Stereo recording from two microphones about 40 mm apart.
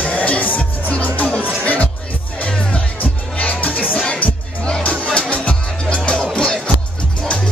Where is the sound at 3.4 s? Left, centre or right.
Left.